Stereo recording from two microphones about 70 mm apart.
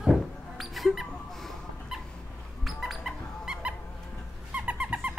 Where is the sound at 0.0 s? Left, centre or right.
Centre.